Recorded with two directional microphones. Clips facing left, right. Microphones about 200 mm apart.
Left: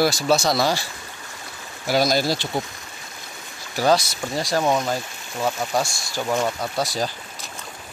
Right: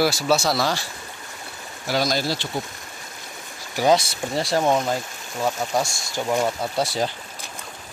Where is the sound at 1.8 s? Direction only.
10° left (ahead or behind).